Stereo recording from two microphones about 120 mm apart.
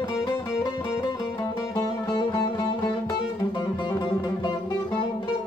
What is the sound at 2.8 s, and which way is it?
Music, 40° left (ahead or behind).